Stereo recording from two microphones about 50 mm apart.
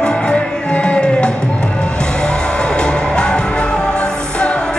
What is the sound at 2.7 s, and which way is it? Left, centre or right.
Music, centre.